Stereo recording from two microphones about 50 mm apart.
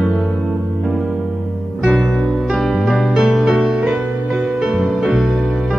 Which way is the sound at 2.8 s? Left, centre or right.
Centre.